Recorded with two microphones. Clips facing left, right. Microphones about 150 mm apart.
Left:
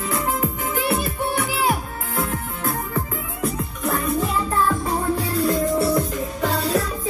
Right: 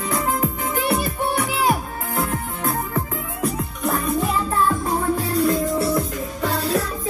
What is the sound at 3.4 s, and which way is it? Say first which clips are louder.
Music: right 1 dB; centre (ahead or behind).